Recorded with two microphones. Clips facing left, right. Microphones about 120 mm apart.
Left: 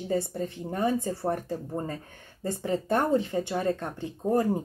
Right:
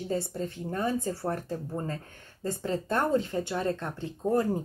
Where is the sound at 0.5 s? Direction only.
20° left (ahead or behind).